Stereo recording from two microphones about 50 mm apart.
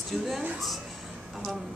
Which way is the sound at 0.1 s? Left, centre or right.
Centre.